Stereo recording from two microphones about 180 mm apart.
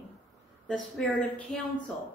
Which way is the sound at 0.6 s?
5° left (ahead or behind).